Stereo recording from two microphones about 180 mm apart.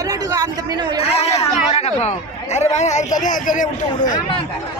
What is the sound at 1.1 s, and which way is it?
Chatter, 35° left (ahead or behind).